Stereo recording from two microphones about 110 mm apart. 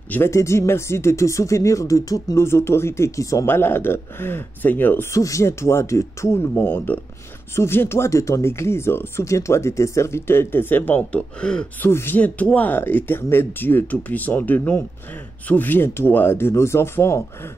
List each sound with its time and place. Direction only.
0.1 s speech: 25° left (ahead or behind)